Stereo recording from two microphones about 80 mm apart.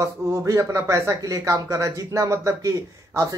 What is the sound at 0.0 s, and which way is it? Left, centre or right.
Speech, right.